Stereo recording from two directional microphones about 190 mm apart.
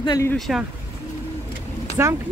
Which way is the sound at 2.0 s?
15° right (ahead or behind).